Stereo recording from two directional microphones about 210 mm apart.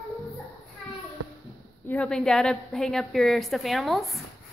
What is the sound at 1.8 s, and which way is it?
A woman's voice, 5° left (ahead or behind).